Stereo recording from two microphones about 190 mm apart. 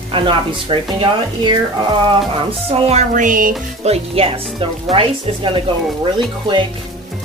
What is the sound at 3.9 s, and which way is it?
Speech, 30° right (ahead or behind).